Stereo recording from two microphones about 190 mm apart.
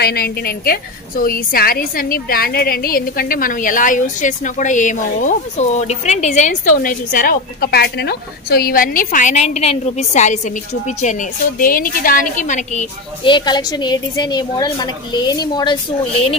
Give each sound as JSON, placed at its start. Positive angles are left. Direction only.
{"t": 0.0, "sound": "a woman's voice", "side_deg": 55}
{"t": 13.2, "sound": "a woman's voice", "side_deg": 25}